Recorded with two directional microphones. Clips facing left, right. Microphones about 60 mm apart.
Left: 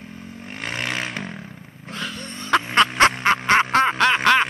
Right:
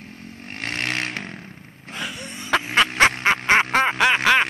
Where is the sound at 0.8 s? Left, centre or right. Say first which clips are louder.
Right 1 dB; right.